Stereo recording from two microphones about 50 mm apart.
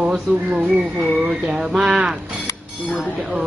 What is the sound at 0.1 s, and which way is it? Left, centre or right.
Speech, right.